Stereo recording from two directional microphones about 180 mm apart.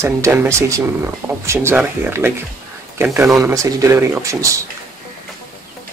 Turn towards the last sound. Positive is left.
turn(degrees=-15)  # may be behind; listen again after turning